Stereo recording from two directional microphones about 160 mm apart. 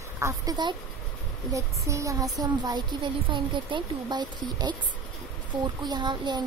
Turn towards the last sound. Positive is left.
turn(degrees=-30)  # may be behind; listen again after turning